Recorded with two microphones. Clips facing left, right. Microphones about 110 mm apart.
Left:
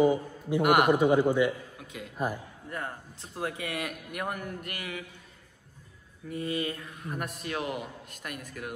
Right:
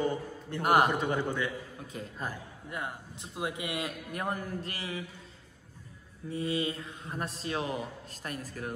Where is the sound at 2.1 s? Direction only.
15° left (ahead or behind).